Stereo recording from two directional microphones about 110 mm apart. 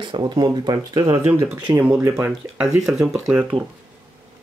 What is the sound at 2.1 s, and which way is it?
Speech, 10° right (ahead or behind).